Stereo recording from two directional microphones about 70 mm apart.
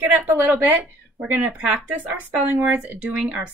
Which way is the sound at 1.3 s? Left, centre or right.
Right.